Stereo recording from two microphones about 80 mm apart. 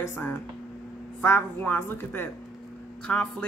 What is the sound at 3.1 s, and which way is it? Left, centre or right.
Speech, centre.